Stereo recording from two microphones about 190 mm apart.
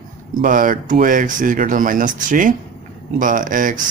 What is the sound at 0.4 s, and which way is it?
Speech, 45° right (ahead or behind).